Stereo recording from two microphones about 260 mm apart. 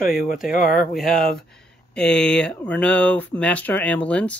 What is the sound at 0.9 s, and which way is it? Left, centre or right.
Speech, centre.